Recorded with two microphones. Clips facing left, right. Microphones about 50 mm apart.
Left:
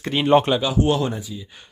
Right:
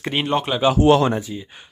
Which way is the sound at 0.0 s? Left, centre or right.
Centre.